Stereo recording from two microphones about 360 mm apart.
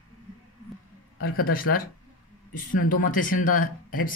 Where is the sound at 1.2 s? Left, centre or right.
Left.